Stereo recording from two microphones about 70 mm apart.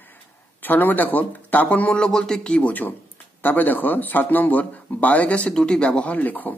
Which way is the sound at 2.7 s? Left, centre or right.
Left.